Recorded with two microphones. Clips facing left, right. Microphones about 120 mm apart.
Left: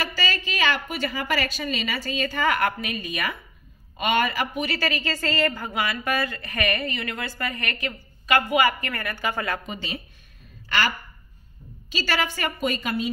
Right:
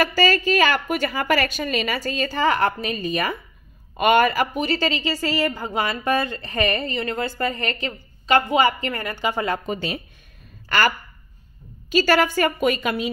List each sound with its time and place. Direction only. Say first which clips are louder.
0.0 s a woman's voice: right 9 dB; 45° right (ahead or behind)
3.9 s a woman's voice: right 6 dB; 50° right (ahead or behind)
4.6 s a woman's voice: right 4 dB; 25° right (ahead or behind)
5.7 s a woman's voice: right 4 dB; 30° right (ahead or behind)
9.7 s a woman's voice: right 7 dB; 50° right (ahead or behind)
11.9 s a woman's voice: right 9 dB; 45° right (ahead or behind); by 13.1 s 65° right (ahead or behind)